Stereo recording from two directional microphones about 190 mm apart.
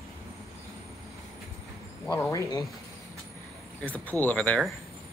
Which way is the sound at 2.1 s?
15° left (ahead or behind).